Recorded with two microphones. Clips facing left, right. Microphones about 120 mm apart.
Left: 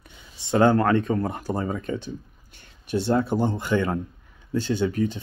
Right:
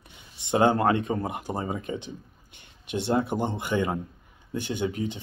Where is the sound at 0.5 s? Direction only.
20° right (ahead or behind).